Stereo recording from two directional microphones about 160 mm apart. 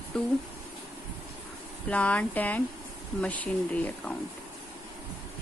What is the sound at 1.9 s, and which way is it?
Speech, 10° left (ahead or behind).